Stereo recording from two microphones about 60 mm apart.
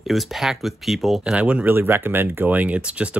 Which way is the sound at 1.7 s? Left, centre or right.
Right.